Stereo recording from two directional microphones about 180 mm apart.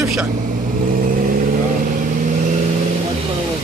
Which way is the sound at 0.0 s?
Centre (ahead or behind).